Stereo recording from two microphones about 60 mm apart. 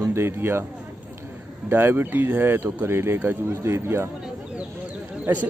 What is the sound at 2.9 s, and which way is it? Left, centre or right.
Speech, right.